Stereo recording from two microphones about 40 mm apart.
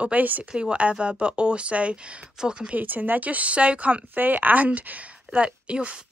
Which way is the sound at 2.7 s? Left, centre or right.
Right.